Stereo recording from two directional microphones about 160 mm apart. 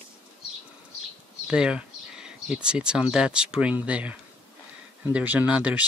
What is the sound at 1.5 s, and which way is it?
Speech, 5° right (ahead or behind).